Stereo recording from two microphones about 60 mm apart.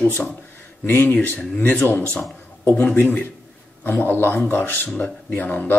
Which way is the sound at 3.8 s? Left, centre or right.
Left.